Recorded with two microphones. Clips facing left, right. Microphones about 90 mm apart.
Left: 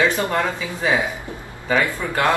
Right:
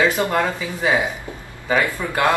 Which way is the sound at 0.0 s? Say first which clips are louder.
Right 1 dB; 15° right (ahead or behind).